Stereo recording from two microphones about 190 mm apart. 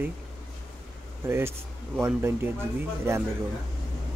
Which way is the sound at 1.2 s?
15° right (ahead or behind).